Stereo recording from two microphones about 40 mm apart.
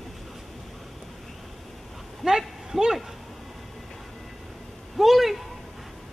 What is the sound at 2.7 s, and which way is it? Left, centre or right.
Speech, centre.